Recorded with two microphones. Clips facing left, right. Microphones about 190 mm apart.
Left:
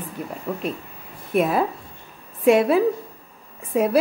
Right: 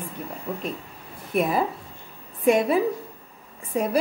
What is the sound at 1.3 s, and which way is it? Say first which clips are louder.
A woman's voice: left 3 dB; centre (ahead or behind).